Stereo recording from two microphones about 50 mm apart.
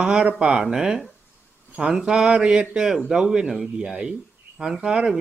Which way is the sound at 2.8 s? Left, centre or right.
Centre.